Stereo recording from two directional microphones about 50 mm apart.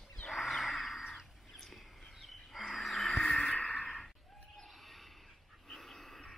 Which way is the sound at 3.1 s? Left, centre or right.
Left.